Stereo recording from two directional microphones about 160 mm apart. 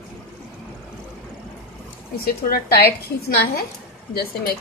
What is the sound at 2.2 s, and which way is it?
Speech, 75° left (ahead or behind).